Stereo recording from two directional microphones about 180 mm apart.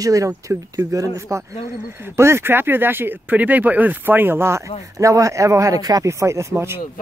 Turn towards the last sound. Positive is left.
turn(degrees=-15)  # may be behind; listen again after turning